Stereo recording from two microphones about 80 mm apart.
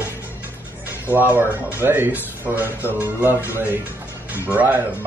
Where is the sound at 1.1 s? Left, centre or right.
Right.